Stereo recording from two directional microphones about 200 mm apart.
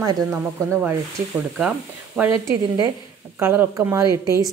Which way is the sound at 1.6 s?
5° right (ahead or behind).